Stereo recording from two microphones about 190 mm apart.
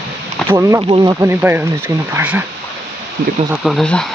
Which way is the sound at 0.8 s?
25° right (ahead or behind).